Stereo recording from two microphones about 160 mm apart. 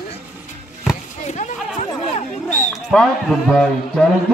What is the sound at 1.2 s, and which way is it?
Speech, 45° left (ahead or behind).